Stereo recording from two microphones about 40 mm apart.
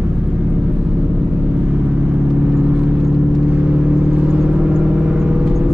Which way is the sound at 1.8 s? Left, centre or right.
Right.